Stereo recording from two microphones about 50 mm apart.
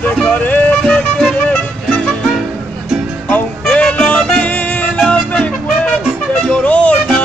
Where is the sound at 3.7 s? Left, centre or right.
Left.